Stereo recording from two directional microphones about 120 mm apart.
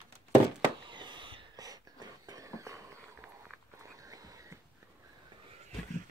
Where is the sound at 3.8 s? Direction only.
30° right (ahead or behind).